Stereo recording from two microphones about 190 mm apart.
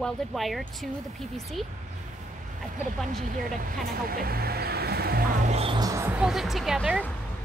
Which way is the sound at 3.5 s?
50° right (ahead or behind).